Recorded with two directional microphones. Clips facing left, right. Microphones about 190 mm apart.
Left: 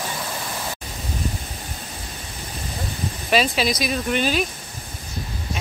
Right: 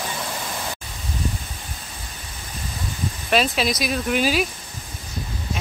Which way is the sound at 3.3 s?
Centre (ahead or behind).